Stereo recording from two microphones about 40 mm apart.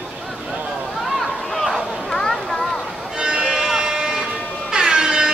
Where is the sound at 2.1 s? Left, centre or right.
Centre.